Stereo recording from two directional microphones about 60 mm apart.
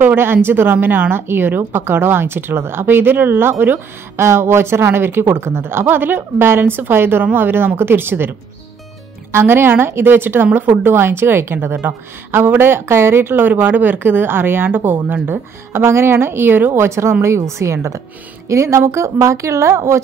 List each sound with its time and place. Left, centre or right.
0.0 s a woman's voice: right